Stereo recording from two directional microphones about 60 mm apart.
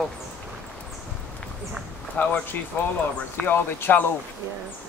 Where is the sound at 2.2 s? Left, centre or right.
Left.